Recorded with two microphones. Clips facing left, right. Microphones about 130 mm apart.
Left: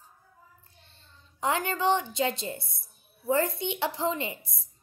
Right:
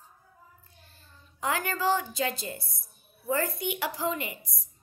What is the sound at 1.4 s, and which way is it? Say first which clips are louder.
A woman's voice: left 2 dB; 25° left (ahead or behind).